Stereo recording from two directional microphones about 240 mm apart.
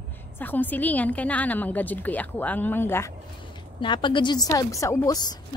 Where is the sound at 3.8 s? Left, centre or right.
Centre.